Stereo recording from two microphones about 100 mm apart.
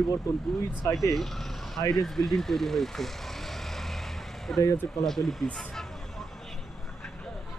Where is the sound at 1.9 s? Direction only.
5° left (ahead or behind).